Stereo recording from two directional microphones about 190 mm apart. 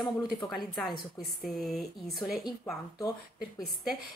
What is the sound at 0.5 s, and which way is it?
A woman's voice, centre (ahead or behind).